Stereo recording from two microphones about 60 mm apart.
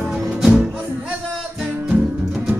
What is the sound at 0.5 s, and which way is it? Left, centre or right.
Music, centre.